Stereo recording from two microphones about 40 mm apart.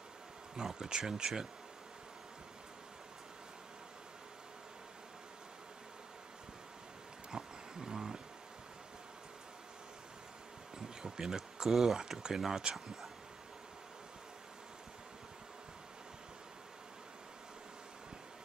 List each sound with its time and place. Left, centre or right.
0.6 s speech: centre
7.2 s a sound: centre
11.0 s speech: centre